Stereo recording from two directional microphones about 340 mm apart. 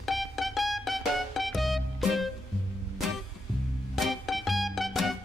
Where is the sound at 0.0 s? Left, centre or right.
Centre.